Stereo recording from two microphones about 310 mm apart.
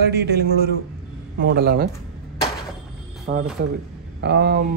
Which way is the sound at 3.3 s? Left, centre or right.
Right.